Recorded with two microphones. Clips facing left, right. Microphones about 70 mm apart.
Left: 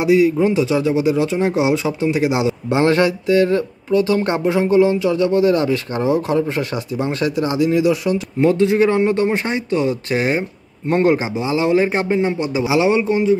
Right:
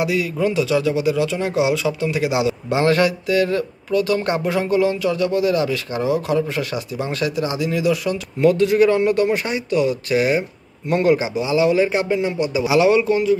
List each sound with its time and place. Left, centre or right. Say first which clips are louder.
0.0 s a man's voice: left 6 dB; left